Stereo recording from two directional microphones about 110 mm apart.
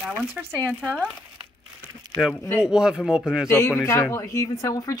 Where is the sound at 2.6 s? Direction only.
5° right (ahead or behind).